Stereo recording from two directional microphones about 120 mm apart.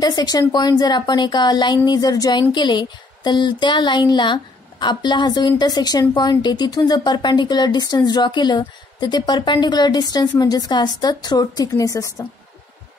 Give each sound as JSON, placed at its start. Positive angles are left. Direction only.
{"t": 0.0, "sound": "a woman's voice", "side_deg": 35}